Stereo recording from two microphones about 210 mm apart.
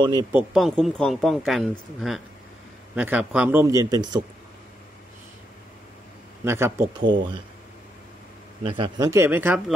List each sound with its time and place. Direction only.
0.0 s speech: 20° right (ahead or behind)
0.5 s a man's voice: centre (ahead or behind); by 4.2 s 20° right (ahead or behind)
6.4 s a man's voice: 10° right (ahead or behind)
8.6 s a man's voice: 25° right (ahead or behind)